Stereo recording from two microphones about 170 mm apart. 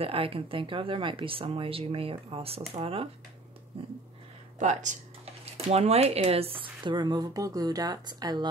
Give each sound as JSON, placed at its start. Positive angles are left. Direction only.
{"t": 0.0, "sound": "speech", "side_deg": -35}
{"t": 4.6, "sound": "speech", "side_deg": -45}